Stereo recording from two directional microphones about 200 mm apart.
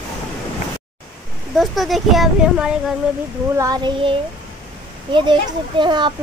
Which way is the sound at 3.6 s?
20° right (ahead or behind).